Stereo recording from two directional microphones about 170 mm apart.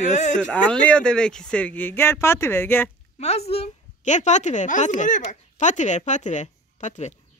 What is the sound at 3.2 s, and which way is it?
A woman's voice, 40° left (ahead or behind).